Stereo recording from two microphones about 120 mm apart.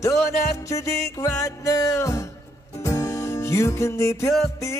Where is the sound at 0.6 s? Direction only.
25° left (ahead or behind).